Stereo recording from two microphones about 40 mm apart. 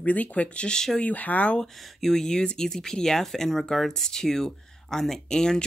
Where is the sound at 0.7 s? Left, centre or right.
Centre.